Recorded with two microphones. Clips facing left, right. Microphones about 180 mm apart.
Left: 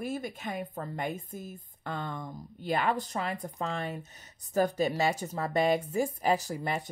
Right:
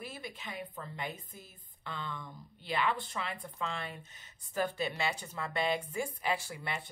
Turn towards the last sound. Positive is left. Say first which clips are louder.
# left 7 dB
turn(degrees=40)  # may be behind; listen again after turning